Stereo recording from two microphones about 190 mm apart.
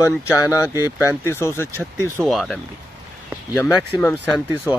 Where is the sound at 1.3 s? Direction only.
15° left (ahead or behind).